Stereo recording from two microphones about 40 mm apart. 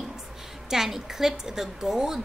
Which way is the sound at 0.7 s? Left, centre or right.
Centre.